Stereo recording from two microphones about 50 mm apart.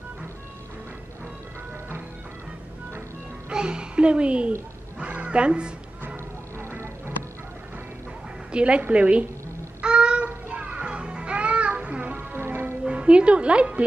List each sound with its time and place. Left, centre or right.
3.4 s a woman's voice: centre
4.9 s cat: right
8.5 s a woman's voice: right
9.8 s a sound: centre
10.2 s music: right
12.3 s music: right
12.8 s speech: right